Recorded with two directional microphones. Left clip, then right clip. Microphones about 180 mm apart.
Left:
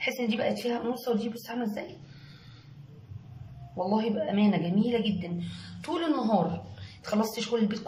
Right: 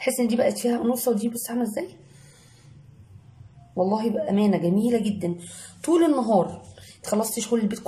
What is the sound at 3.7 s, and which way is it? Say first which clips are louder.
A man's voice: right 5 dB; 30° right (ahead or behind).